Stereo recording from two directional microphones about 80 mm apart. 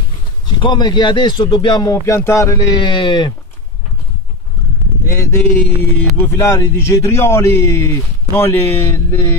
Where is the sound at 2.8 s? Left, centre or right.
Left.